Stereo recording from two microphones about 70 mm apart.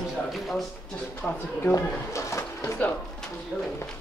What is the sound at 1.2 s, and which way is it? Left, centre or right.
Speech, centre.